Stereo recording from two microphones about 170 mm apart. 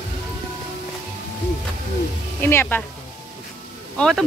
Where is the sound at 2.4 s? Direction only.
10° left (ahead or behind).